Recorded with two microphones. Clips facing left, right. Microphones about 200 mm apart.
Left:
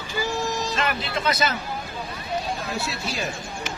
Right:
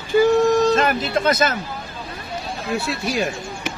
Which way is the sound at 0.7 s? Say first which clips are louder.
Right 8 dB; 45° right (ahead or behind).